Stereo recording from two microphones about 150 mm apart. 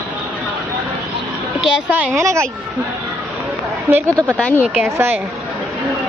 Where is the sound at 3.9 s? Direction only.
10° right (ahead or behind).